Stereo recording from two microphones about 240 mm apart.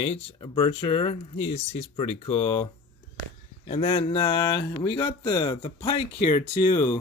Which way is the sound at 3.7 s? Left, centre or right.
Left.